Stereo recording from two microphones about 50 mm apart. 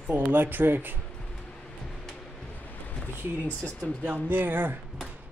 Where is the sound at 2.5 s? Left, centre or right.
Left.